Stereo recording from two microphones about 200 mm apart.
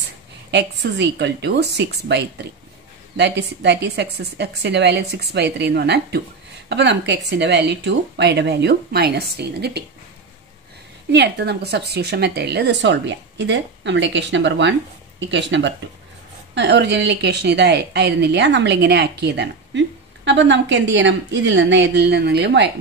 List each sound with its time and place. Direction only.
0.5 s speech: 60° right (ahead or behind)
11.1 s speech: 55° right (ahead or behind)